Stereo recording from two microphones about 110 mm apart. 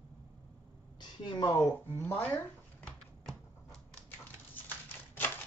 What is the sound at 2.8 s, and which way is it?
Typewriter, 5° left (ahead or behind).